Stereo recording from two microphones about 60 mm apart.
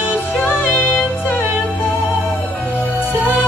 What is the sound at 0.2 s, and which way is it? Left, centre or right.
Music, left.